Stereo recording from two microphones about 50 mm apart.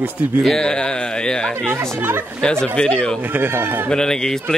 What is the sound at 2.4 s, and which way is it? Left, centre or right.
Speech, centre.